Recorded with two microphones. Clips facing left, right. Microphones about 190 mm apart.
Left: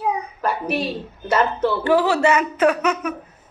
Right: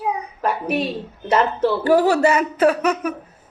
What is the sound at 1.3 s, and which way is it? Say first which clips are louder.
Speech: right 1 dB; 35° right (ahead or behind).